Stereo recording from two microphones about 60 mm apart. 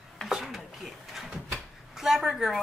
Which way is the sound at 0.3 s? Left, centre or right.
Centre.